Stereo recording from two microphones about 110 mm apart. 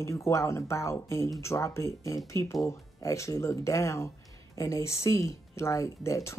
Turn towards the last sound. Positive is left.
turn(degrees=25)  # may be behind; listen again after turning